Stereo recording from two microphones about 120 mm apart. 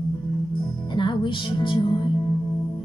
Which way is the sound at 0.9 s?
40° left (ahead or behind).